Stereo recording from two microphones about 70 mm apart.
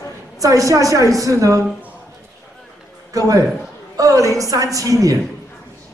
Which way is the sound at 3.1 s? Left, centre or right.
Right.